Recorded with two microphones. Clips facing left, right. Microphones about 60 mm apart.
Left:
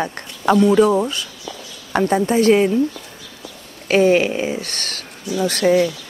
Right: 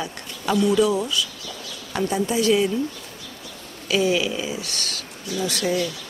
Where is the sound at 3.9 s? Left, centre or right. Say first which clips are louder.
Left 7 dB; left.